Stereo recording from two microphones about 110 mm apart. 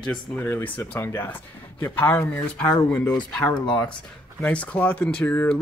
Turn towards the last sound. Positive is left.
turn(degrees=15)  # may be behind; listen again after turning